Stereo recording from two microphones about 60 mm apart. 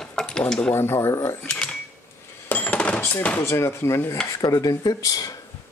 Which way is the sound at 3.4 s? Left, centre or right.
Left.